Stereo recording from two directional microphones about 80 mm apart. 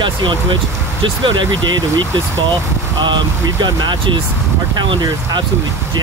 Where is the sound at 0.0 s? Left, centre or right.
Right.